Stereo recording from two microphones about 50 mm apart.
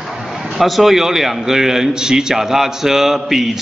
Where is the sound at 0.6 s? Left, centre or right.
Centre.